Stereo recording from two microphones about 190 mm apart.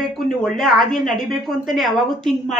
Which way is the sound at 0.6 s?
Centre (ahead or behind).